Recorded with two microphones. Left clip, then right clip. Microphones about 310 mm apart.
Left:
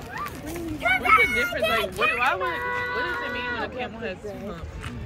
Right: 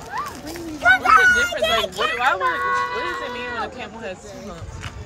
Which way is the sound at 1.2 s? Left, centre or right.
Right.